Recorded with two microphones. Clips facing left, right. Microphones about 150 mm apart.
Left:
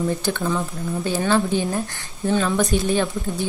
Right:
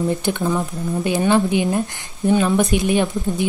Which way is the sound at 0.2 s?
15° right (ahead or behind).